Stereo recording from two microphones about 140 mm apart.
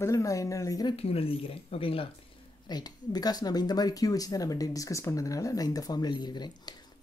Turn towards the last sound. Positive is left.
turn(degrees=30)  # may be behind; listen again after turning